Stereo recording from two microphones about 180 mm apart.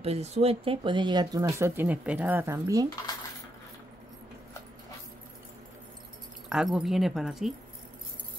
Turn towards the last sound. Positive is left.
turn(degrees=0)  # may be behind; listen again after turning